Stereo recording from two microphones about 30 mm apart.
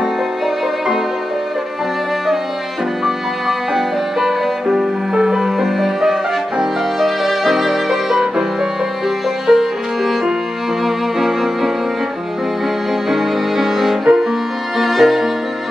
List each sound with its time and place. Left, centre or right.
3.4 s music: centre
6.6 s violin: centre
9.5 s music: centre
13.1 s music: centre
14.0 s music: centre
14.8 s violin: centre